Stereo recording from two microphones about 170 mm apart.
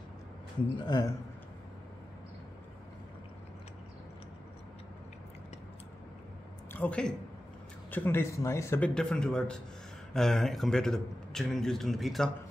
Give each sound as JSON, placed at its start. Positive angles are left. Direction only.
{"t": 0.7, "sound": "a man's voice", "side_deg": 25}
{"t": 6.7, "sound": "a man's voice", "side_deg": 10}